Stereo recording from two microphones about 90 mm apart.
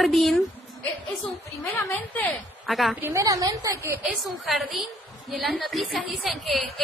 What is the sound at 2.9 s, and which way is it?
Speech, 25° right (ahead or behind).